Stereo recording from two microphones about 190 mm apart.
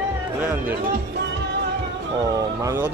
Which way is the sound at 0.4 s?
10° right (ahead or behind).